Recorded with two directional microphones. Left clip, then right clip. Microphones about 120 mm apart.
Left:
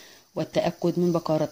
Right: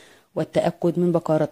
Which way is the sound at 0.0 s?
35° right (ahead or behind).